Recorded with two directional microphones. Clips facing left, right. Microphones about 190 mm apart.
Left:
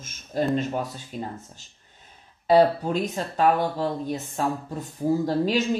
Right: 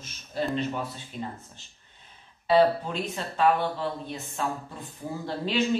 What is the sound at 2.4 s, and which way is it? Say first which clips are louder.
Speech: left 3 dB; 40° left (ahead or behind).